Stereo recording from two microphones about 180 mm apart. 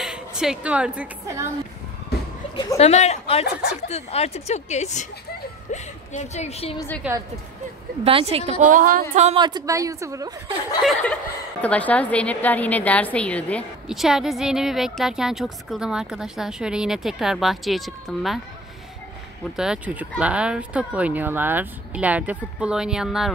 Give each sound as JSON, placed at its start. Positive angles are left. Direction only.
{"t": 0.0, "sound": "a woman's voice", "side_deg": -5}
{"t": 2.5, "sound": "speech", "side_deg": 20}
{"t": 2.8, "sound": "a woman's voice", "side_deg": 35}
{"t": 7.0, "sound": "speech", "side_deg": -10}
{"t": 8.0, "sound": "a woman's voice", "side_deg": -30}
{"t": 9.1, "sound": "a woman's voice", "side_deg": -40}
{"t": 9.4, "sound": "speech", "side_deg": -20}
{"t": 10.8, "sound": "a woman's voice", "side_deg": 5}
{"t": 19.5, "sound": "speech", "side_deg": -5}